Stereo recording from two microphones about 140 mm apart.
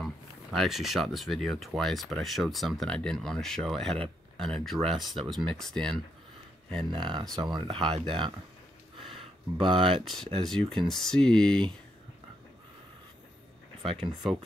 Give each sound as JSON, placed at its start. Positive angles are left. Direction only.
{"t": 0.0, "sound": "speech", "side_deg": 0}
{"t": 6.9, "sound": "speech", "side_deg": -35}
{"t": 9.6, "sound": "speech", "side_deg": -35}
{"t": 10.0, "sound": "speech", "side_deg": 0}